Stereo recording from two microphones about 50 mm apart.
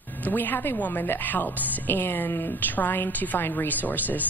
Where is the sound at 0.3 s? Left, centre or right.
Left.